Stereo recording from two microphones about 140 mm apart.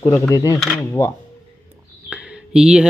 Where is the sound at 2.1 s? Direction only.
5° right (ahead or behind).